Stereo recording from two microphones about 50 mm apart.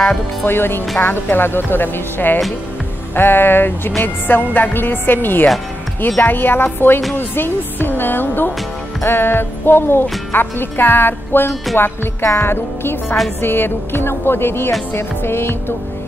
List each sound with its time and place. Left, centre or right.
0.5 s speech: left